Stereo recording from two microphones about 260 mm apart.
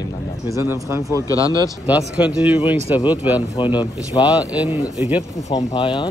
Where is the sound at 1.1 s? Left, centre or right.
Centre.